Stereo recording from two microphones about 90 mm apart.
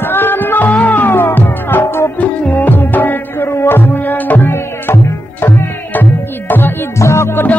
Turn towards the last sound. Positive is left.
turn(degrees=25)  # may be behind; listen again after turning